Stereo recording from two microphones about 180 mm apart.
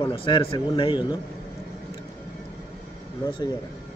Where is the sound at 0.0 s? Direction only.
30° left (ahead or behind).